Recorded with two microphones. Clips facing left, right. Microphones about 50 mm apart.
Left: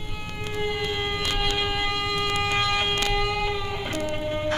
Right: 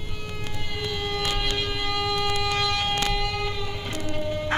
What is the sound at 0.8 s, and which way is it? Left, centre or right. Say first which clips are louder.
Siren: left 1 dB; left.